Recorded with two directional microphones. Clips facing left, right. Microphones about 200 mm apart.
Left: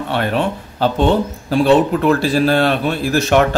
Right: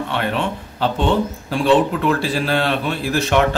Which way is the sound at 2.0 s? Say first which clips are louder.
Left 5 dB; 45° left (ahead or behind).